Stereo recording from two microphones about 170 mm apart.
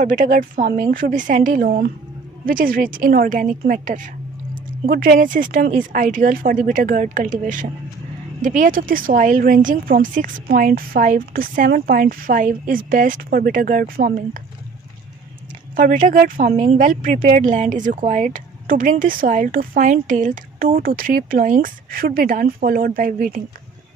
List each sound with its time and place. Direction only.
0.0 s speech: 50° right (ahead or behind)
15.7 s speech: 50° right (ahead or behind)
16.5 s speech: 45° right (ahead or behind)